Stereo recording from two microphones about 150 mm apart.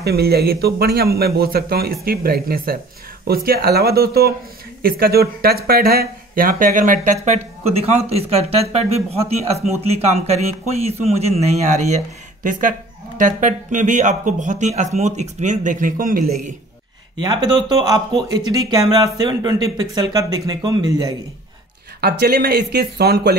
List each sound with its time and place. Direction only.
0.0 s a man's voice: 90° right; by 16.5 s 65° right (ahead or behind)
17.2 s speech: 25° right (ahead or behind)
22.0 s a man's voice: 90° right